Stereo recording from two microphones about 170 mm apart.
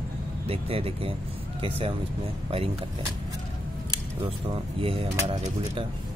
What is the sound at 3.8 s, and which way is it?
Speech, 30° right (ahead or behind).